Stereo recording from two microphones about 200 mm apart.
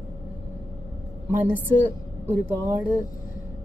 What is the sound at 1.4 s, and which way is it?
Speech, 10° right (ahead or behind).